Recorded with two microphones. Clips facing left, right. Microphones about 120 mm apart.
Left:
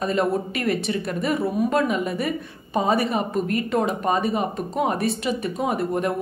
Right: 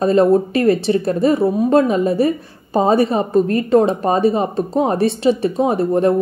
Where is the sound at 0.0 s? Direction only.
30° right (ahead or behind).